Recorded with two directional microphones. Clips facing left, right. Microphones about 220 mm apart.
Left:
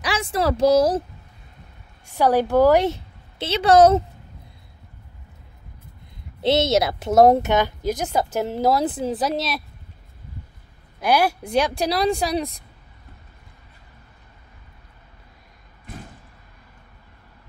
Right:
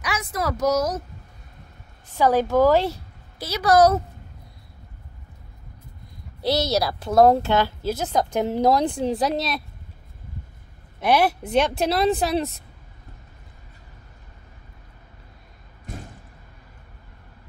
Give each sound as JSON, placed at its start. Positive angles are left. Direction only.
{"t": 0.0, "sound": "a woman's voice", "side_deg": 30}
{"t": 2.0, "sound": "a woman's voice", "side_deg": 15}
{"t": 6.4, "sound": "a woman's voice", "side_deg": 25}
{"t": 11.0, "sound": "speech", "side_deg": 0}